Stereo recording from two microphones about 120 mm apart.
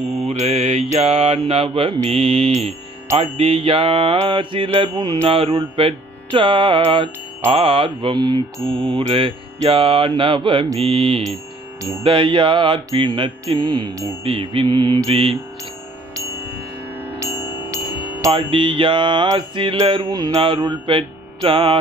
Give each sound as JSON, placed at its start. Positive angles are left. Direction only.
{"t": 0.3, "sound": "mantra", "side_deg": -55}
{"t": 5.2, "sound": "mantra", "side_deg": -50}
{"t": 17.2, "sound": "music", "side_deg": -25}
{"t": 18.3, "sound": "mantra", "side_deg": -45}
{"t": 20.1, "sound": "mantra", "side_deg": -35}